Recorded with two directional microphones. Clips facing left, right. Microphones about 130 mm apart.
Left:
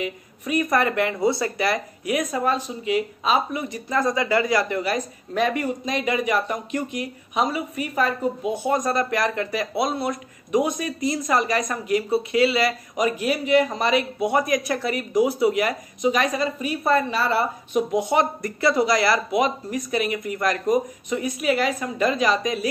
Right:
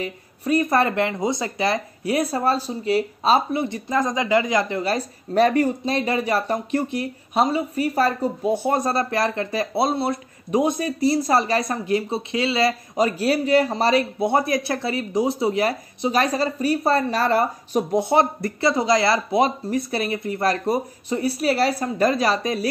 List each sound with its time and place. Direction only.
0.0 s speech: 30° right (ahead or behind)